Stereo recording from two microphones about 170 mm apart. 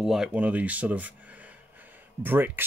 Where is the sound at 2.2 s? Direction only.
10° right (ahead or behind).